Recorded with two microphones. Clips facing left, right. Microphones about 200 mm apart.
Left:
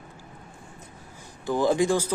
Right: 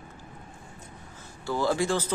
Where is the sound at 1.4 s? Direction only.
15° left (ahead or behind).